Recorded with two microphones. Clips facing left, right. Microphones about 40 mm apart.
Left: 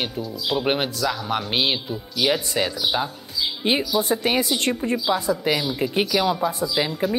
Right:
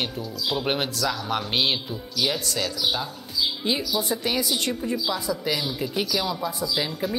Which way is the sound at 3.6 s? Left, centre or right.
Left.